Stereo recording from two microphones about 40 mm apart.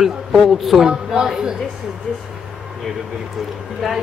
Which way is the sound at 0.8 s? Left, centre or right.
Centre.